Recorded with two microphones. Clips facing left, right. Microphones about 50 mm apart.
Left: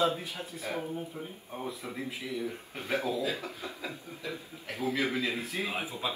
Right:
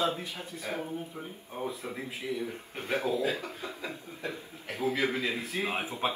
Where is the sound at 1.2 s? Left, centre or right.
Centre.